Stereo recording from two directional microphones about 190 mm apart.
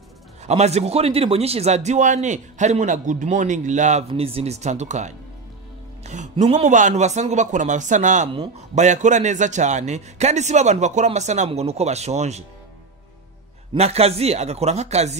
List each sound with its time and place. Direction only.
0.5 s a man's voice: 35° right (ahead or behind)
13.7 s a man's voice: 35° right (ahead or behind)